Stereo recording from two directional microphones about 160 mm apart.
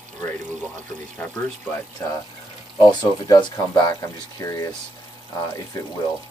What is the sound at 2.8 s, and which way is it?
Speech, 30° left (ahead or behind).